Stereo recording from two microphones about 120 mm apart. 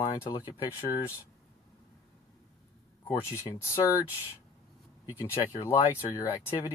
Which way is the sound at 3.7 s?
25° left (ahead or behind).